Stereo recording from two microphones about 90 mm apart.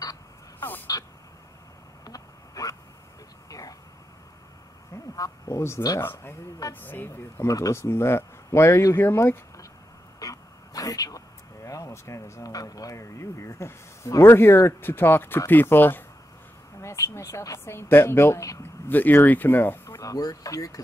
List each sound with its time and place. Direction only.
0.6 s crow: 20° left (ahead or behind)
2.0 s a sound: 40° left (ahead or behind)
3.4 s vehicle: 40° left (ahead or behind)
5.1 s speech: 40° left (ahead or behind)
5.9 s speech: 25° left (ahead or behind)
7.4 s speech: 35° left (ahead or behind)
10.1 s speech: 40° left (ahead or behind)
18.9 s speech: 20° left (ahead or behind)
20.0 s speech: 40° left (ahead or behind)